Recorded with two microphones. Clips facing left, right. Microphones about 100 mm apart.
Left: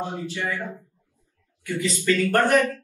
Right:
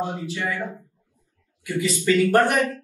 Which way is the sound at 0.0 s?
15° right (ahead or behind).